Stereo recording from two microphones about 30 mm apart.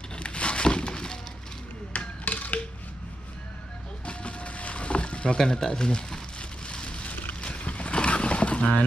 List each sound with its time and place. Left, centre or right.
0.1 s a sound: left
1.9 s chop: left
4.0 s music: left
5.4 s speech: centre
5.7 s speech: left
7.4 s boat: left